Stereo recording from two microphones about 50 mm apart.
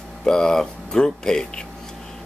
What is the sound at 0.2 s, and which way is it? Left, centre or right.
Speech, centre.